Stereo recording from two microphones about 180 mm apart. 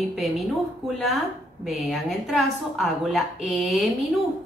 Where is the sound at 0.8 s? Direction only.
Centre (ahead or behind).